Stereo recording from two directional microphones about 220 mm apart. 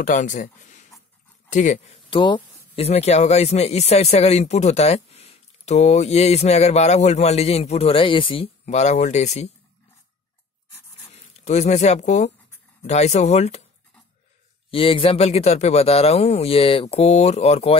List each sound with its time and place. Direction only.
0.0 s speech: 35° left (ahead or behind)
11.1 s speech: 30° left (ahead or behind)
14.7 s speech: 25° left (ahead or behind)